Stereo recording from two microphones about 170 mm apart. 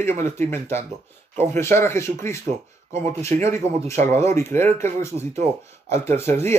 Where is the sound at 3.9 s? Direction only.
15° left (ahead or behind).